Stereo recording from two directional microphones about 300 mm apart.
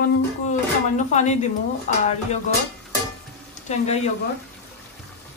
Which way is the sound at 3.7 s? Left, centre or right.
Left.